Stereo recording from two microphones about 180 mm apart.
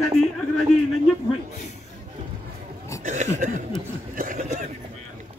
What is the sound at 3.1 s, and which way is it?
Chuckle, 45° right (ahead or behind).